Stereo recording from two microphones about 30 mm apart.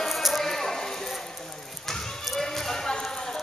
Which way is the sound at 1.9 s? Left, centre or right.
Centre.